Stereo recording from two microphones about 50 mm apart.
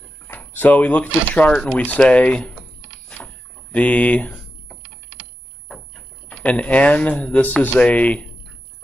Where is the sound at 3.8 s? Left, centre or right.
Left.